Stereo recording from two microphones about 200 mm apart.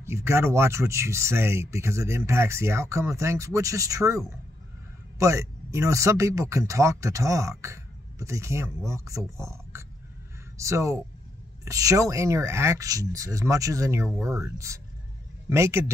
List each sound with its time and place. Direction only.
0.0 s speech: 15° right (ahead or behind)